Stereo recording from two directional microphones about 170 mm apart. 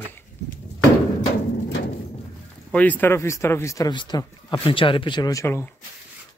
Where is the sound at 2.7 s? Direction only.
10° left (ahead or behind).